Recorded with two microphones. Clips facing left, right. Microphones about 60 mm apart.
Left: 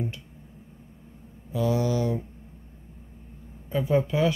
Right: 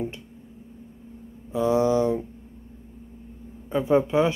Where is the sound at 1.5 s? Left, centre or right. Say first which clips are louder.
Right 5 dB; right.